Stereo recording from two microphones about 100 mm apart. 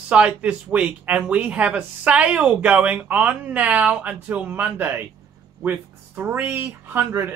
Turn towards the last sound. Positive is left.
turn(degrees=-20)  # may be behind; listen again after turning